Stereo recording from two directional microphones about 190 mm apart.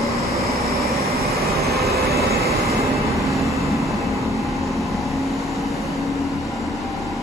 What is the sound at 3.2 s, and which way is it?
Vehicle, centre (ahead or behind).